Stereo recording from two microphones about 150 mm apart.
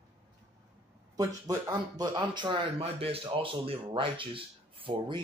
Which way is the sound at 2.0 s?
30° right (ahead or behind).